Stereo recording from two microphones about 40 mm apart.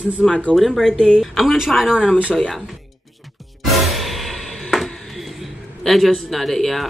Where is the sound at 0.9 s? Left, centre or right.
Left.